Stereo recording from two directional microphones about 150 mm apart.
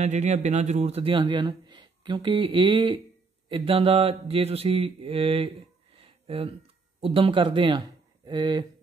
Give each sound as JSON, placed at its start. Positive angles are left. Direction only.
{"t": 0.0, "sound": "speech", "side_deg": -50}
{"t": 3.4, "sound": "mantra", "side_deg": -35}
{"t": 7.0, "sound": "speech", "side_deg": -35}